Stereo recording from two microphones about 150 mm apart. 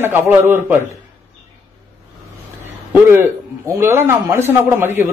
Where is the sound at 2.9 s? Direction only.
15° right (ahead or behind).